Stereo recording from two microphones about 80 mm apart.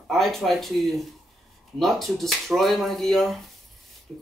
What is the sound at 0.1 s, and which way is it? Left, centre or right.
Speech, centre.